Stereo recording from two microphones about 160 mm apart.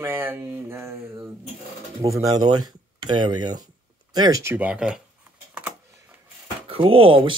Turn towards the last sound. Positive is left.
turn(degrees=-35)  # may be behind; listen again after turning